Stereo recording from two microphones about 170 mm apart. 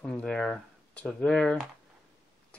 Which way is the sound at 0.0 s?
5° left (ahead or behind).